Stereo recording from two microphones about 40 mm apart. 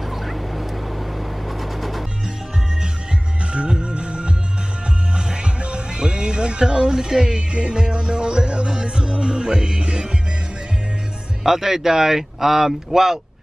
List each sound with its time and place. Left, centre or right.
0.1 s fowl: centre
1.6 s music: centre
3.5 s music: right
11.4 s speech: centre